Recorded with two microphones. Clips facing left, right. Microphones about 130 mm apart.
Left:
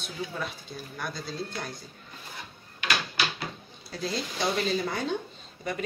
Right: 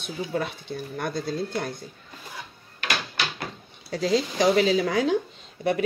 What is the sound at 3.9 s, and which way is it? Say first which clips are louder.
Speech: right 9 dB; 90° right.